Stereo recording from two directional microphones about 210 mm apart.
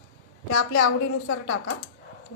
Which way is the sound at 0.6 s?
90° left.